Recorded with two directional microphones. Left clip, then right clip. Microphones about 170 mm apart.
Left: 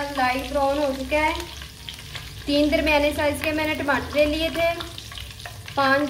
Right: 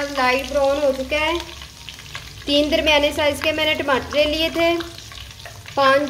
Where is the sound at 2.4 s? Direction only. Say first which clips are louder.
Right 3 dB; 45° right (ahead or behind).